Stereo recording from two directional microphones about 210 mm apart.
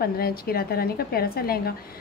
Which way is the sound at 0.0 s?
45° left (ahead or behind).